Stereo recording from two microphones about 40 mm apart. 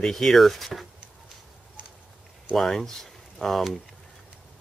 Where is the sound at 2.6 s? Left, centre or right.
Centre.